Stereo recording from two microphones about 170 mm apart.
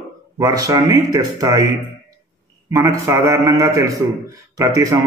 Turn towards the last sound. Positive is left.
turn(degrees=-20)  # may be behind; listen again after turning